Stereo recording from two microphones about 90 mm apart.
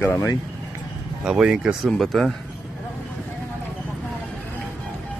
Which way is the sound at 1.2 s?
10° right (ahead or behind).